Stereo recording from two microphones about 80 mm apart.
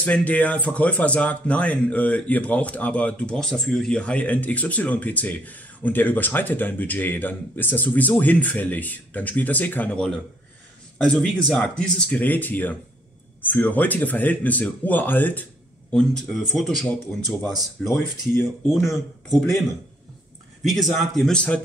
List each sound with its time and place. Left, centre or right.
0.0 s speech: centre
9.9 s speech: centre
12.2 s speech: left
15.9 s a man's voice: centre
17.9 s speech: left
18.7 s a man's voice: centre
20.6 s a man's voice: centre